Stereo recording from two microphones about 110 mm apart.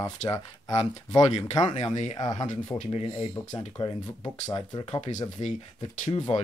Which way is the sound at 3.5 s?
40° left (ahead or behind).